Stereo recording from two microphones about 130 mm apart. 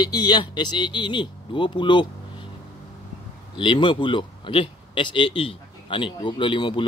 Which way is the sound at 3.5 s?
40° left (ahead or behind).